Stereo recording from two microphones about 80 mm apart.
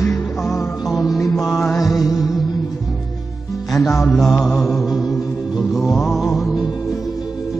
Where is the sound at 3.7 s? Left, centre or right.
Centre.